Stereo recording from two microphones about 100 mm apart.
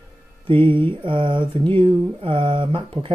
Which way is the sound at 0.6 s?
60° right (ahead or behind).